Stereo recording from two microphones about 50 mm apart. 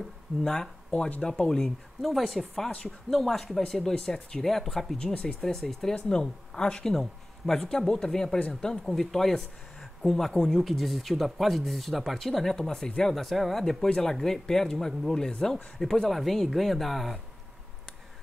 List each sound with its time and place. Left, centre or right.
0.4 s speech: centre
2.0 s speech: centre
4.4 s speech: centre
5.0 s speech: centre
5.4 s speech: centre
5.9 s speech: centre
6.9 s speech: centre
13.1 s speech: centre